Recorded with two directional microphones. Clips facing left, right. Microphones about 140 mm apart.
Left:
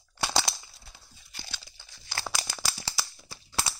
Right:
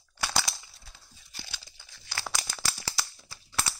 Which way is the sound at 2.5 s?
5° left (ahead or behind).